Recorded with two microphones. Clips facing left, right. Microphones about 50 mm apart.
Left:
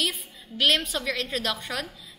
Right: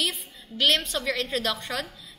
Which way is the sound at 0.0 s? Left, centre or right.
Centre.